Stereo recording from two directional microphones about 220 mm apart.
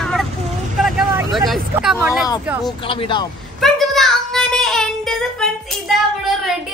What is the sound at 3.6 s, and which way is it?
Child singing, centre (ahead or behind).